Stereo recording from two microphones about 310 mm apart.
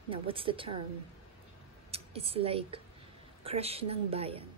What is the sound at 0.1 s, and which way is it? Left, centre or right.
Speech, centre.